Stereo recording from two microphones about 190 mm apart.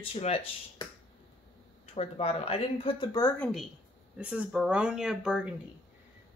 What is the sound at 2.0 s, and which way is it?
Speech, 30° left (ahead or behind).